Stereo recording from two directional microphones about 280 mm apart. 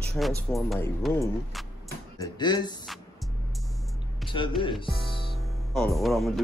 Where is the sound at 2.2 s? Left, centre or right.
Centre.